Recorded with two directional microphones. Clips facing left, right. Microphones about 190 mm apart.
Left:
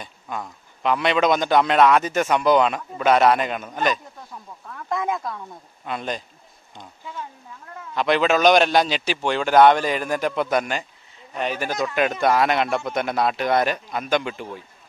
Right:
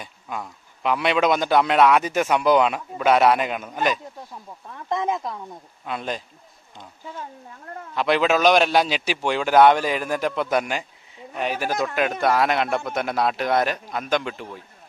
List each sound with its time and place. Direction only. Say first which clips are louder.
0.0 s a man's voice: left 1 dB; 5° right (ahead or behind)
4.6 s speech: right 1 dB; 20° right (ahead or behind)
5.9 s a man's voice: even; centre (ahead or behind)
7.1 s speech: even; 45° right (ahead or behind)
7.9 s a man's voice: left 1 dB; 5° right (ahead or behind)